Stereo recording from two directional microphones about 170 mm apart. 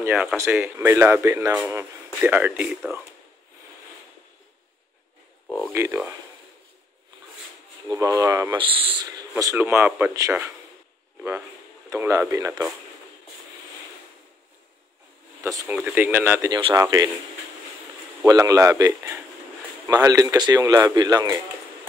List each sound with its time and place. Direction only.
0.1 s speech: 5° right (ahead or behind)
5.7 s speech: 15° right (ahead or behind)
7.9 s speech: 20° right (ahead or behind)
8.5 s speech: 30° right (ahead or behind)
9.4 s speech: 15° right (ahead or behind)
11.9 s speech: 15° right (ahead or behind)
15.4 s speech: 15° right (ahead or behind)
16.5 s speech: 25° right (ahead or behind)
18.2 s speech: 20° right (ahead or behind)